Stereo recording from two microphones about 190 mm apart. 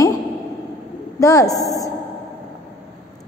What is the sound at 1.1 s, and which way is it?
Speech, 15° left (ahead or behind).